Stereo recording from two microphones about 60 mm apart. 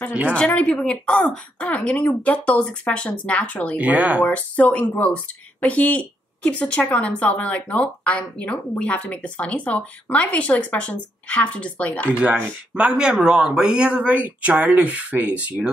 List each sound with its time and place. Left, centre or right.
0.3 s a woman's voice: centre
3.7 s speech: right
4.2 s speech: left
12.7 s speech: centre